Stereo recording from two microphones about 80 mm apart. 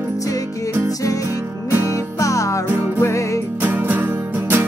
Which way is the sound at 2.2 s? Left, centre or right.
Left.